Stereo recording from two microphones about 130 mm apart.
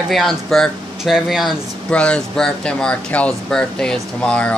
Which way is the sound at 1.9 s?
10° left (ahead or behind).